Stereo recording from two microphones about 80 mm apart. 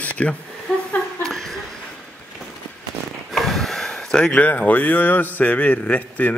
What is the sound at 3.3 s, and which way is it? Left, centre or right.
Speech, centre.